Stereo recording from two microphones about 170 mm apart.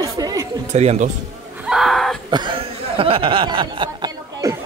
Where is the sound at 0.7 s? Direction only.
40° right (ahead or behind).